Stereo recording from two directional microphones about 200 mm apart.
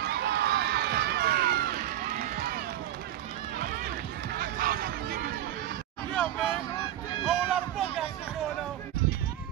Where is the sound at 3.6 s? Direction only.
50° right (ahead or behind).